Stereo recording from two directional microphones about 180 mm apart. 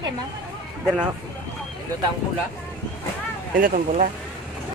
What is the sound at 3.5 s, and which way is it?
Speech, 50° right (ahead or behind).